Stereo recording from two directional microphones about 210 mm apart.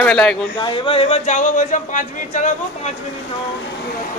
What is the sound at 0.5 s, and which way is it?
Speech, 25° left (ahead or behind).